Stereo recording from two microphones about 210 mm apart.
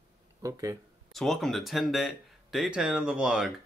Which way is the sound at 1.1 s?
Centre (ahead or behind).